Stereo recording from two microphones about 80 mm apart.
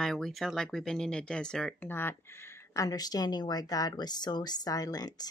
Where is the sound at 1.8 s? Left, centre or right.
Left.